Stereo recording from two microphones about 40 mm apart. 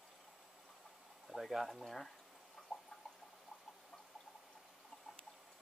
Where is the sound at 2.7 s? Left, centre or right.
Centre.